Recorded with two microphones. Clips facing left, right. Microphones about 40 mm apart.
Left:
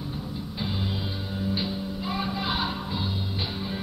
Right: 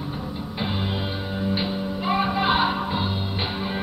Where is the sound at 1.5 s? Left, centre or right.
Right.